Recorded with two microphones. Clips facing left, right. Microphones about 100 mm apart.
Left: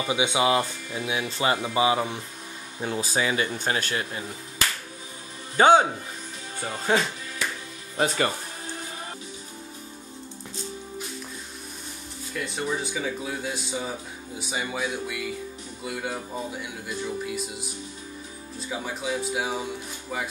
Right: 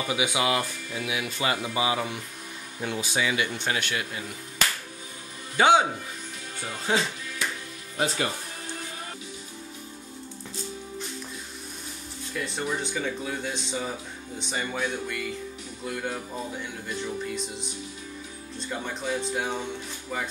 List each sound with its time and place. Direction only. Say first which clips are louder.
0.0 s speech: left 3 dB; 25° left (ahead or behind)
5.6 s speech: left 3 dB; 40° left (ahead or behind)
6.9 s music: left 2 dB; 45° left (ahead or behind)
12.4 s speech: left 1 dB; centre (ahead or behind)